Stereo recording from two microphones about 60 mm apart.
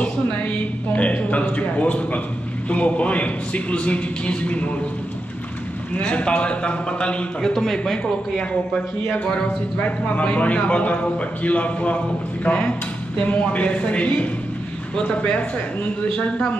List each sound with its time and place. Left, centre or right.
0.0 s a man's voice: left
5.9 s a man's voice: centre